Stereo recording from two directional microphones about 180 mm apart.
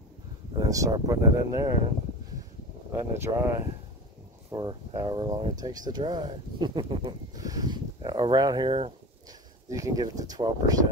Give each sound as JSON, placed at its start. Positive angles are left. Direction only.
{"t": 0.6, "sound": "speech", "side_deg": -20}
{"t": 2.9, "sound": "speech", "side_deg": -15}
{"t": 9.7, "sound": "speech", "side_deg": -20}